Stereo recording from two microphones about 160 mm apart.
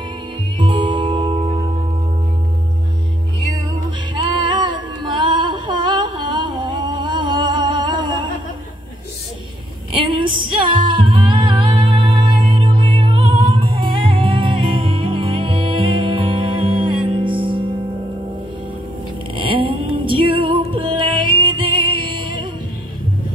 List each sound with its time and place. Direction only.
0.6 s music: 30° right (ahead or behind)
4.1 s music: 30° right (ahead or behind)
9.9 s music: 30° right (ahead or behind)
19.3 s music: 35° right (ahead or behind)